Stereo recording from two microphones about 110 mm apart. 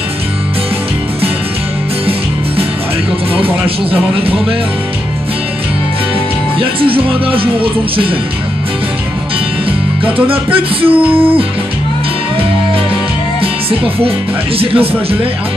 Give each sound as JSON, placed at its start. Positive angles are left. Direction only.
{"t": 3.6, "sound": "speech", "side_deg": -55}
{"t": 6.6, "sound": "speech", "side_deg": -55}
{"t": 10.2, "sound": "speech", "side_deg": -55}
{"t": 13.4, "sound": "music", "side_deg": -60}
{"t": 14.6, "sound": "speech", "side_deg": -60}